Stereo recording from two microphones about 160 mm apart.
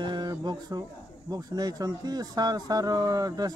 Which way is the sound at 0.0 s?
25° right (ahead or behind).